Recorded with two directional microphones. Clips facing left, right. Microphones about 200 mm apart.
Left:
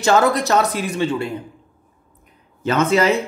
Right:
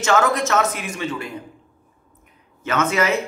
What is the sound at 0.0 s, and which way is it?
A man's voice, 35° left (ahead or behind).